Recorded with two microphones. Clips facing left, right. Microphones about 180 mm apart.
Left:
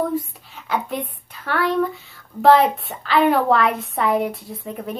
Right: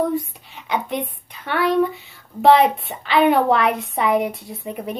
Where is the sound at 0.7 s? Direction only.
5° left (ahead or behind).